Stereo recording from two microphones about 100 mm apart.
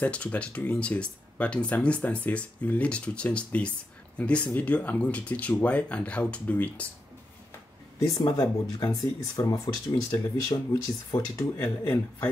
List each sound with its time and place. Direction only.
0.0 s speech: 15° left (ahead or behind)
8.0 s speech: 40° left (ahead or behind); by 12.3 s 25° left (ahead or behind)